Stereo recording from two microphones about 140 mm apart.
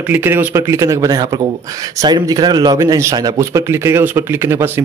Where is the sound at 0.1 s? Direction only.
15° right (ahead or behind).